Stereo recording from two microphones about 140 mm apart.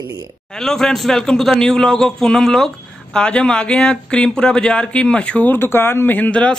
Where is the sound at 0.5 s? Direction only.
5° left (ahead or behind).